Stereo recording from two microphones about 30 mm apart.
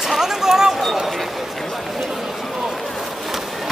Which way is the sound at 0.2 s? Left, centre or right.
Centre.